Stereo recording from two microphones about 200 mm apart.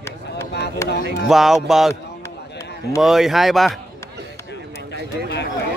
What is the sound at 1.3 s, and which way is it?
Speech, centre (ahead or behind).